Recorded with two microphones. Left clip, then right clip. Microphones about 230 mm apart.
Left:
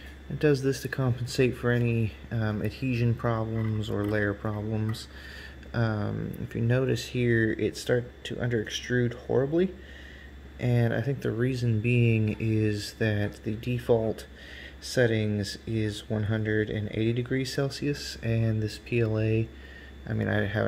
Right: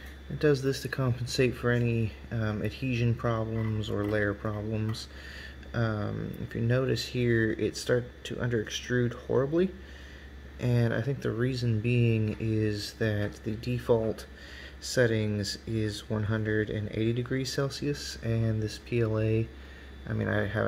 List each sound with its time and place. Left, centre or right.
0.4 s speech: centre